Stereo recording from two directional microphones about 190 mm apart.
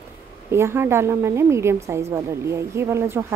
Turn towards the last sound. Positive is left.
turn(degrees=-15)  # may be behind; listen again after turning